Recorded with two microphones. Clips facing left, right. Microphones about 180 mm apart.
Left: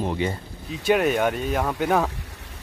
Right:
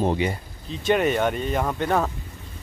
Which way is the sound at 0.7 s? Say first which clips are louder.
Left 1 dB; 5° left (ahead or behind).